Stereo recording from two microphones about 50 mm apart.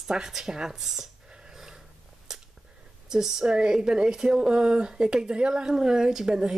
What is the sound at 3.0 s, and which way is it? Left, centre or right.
Speech, centre.